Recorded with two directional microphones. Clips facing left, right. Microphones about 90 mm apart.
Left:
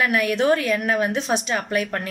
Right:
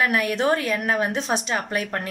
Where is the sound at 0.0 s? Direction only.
30° right (ahead or behind).